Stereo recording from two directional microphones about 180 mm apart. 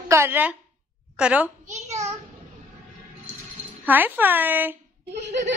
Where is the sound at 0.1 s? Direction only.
10° right (ahead or behind).